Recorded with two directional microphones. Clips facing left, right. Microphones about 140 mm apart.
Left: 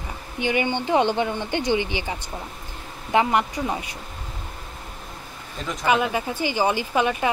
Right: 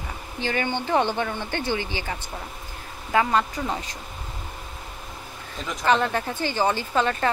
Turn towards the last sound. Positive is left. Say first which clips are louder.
# left 1 dB
turn(degrees=10)  # may be behind; listen again after turning